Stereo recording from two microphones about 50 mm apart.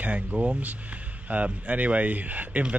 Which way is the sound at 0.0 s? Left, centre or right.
Right.